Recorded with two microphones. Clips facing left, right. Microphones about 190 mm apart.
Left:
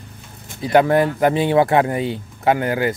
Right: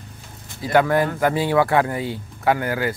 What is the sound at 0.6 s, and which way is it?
Speech, 20° left (ahead or behind).